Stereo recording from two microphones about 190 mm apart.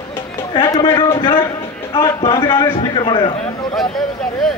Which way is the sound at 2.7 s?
25° left (ahead or behind).